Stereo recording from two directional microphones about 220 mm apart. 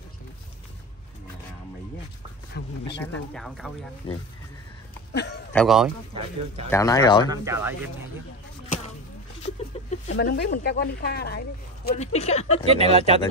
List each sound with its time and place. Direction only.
2.6 s speech: 50° left (ahead or behind)
3.0 s speech: 5° left (ahead or behind)
4.0 s speech: 25° left (ahead or behind)
5.1 s speech: 50° left (ahead or behind)
5.5 s speech: centre (ahead or behind)
6.1 s speech: 25° right (ahead or behind)
6.7 s speech: 15° left (ahead or behind)
7.2 s speech: 10° right (ahead or behind)
8.6 s basketball bounce: 30° left (ahead or behind)
9.4 s a sound: 30° left (ahead or behind)
10.1 s speech: 50° left (ahead or behind)
12.0 s speech: 30° left (ahead or behind)
12.9 s speech: 30° right (ahead or behind)